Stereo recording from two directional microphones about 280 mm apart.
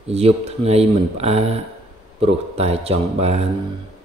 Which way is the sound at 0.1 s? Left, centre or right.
Right.